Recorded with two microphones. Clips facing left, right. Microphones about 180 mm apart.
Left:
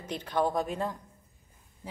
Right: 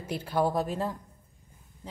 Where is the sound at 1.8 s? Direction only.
10° left (ahead or behind).